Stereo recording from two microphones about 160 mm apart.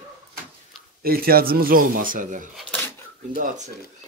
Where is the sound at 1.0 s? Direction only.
70° right (ahead or behind).